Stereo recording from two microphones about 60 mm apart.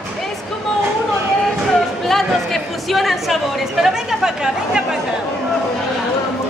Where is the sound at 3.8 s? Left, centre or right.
Centre.